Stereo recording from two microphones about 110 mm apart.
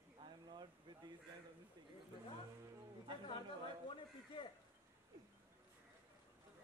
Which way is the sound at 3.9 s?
50° left (ahead or behind).